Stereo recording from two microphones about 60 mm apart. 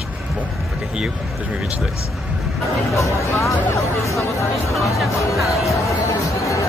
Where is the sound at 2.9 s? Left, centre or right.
Left.